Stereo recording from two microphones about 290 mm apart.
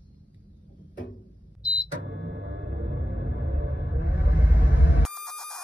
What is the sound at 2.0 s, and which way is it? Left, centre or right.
Music, right.